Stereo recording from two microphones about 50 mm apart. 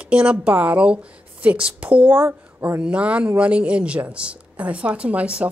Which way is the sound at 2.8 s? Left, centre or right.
Right.